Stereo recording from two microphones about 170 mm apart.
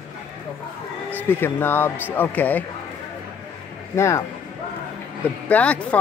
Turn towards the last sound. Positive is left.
turn(degrees=10)  # may be behind; listen again after turning